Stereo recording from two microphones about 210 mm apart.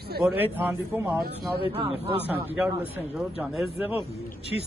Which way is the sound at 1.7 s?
25° right (ahead or behind).